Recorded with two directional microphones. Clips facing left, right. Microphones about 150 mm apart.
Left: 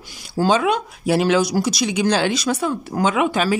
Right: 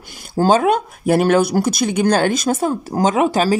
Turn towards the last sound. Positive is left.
turn(degrees=-35)  # may be behind; listen again after turning